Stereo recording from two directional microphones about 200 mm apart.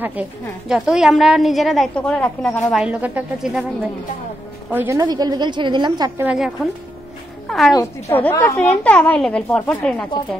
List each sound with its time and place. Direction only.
0.0 s a woman's voice: 5° right (ahead or behind)
2.8 s a woman's voice: 5° right (ahead or behind)
6.2 s a woman's voice: 5° right (ahead or behind)
7.4 s music: centre (ahead or behind)
7.7 s a woman's voice: 10° left (ahead or behind)